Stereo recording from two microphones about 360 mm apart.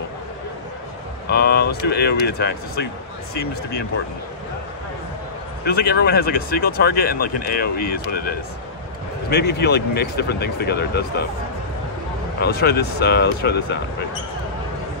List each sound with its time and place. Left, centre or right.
1.3 s speech: left
5.7 s speech: left
9.3 s speech: left
12.4 s speech: left